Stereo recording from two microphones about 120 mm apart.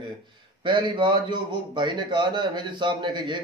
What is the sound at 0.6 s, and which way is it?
A man's voice, 40° right (ahead or behind).